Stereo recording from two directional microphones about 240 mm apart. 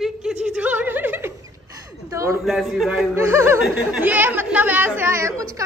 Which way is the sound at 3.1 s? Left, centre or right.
Centre.